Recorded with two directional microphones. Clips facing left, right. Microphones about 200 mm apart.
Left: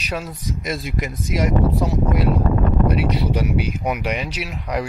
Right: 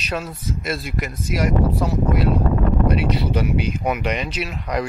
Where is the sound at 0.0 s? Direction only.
15° left (ahead or behind).